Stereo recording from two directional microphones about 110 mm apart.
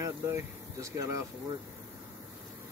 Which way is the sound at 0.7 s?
30° right (ahead or behind).